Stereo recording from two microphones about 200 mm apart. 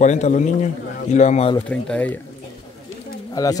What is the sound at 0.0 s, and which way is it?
A man's voice, 35° left (ahead or behind).